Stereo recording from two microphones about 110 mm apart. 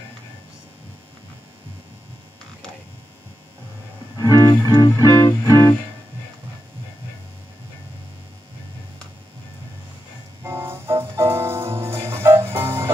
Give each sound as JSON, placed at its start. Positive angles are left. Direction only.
{"t": 4.2, "sound": "music", "side_deg": 30}
{"t": 10.4, "sound": "music", "side_deg": -20}